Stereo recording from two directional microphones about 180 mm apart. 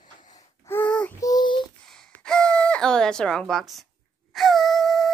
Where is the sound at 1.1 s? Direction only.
20° left (ahead or behind).